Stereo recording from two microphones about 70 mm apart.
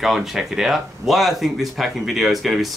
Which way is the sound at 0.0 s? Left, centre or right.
Centre.